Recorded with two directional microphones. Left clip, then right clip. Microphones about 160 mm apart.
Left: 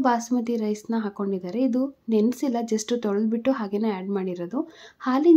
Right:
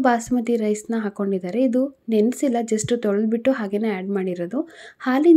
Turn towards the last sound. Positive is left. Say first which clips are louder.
# right 3 dB
turn(degrees=-15)  # may be behind; listen again after turning